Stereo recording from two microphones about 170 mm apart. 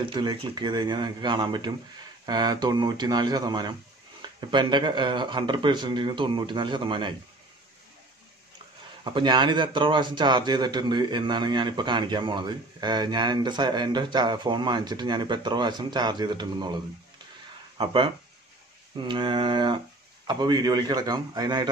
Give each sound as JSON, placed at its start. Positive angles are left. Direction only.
{"t": 0.0, "sound": "a man's voice", "side_deg": -25}
{"t": 9.0, "sound": "a man's voice", "side_deg": -25}